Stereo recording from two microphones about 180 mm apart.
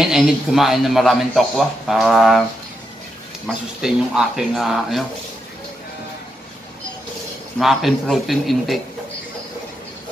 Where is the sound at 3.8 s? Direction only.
Centre (ahead or behind).